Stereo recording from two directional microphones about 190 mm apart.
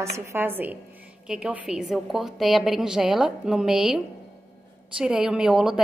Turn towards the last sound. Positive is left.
turn(degrees=-5)  # may be behind; listen again after turning